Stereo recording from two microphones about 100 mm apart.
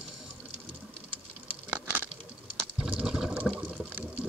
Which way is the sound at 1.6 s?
15° right (ahead or behind).